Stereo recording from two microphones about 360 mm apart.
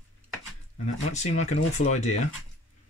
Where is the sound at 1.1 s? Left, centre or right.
Centre.